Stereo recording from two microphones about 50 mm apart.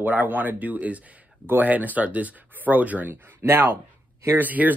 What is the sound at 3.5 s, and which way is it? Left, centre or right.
Speech, right.